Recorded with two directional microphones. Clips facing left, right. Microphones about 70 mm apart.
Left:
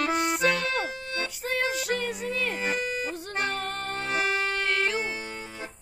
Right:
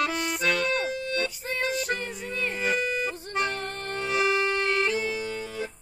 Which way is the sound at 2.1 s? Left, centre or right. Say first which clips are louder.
Left 2 dB; left.